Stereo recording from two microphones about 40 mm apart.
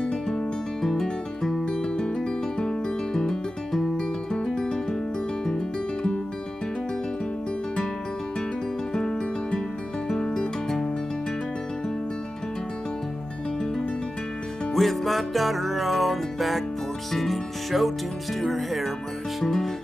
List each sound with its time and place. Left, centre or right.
0.0 s music: left
8.9 s music: centre
14.7 s music: centre
17.1 s speech: centre
19.4 s music: centre